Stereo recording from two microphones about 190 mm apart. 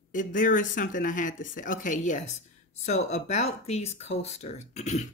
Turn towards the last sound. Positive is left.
turn(degrees=35)  # may be behind; listen again after turning